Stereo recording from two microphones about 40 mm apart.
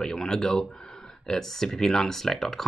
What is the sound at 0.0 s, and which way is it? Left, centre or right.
Speech, centre.